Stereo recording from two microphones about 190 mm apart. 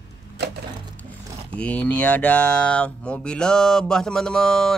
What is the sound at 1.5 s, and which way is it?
Speech, 5° left (ahead or behind).